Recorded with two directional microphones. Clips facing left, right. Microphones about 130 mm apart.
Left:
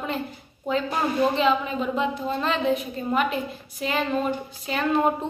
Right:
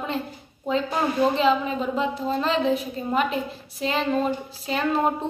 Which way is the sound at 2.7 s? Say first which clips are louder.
Even; 30° right (ahead or behind).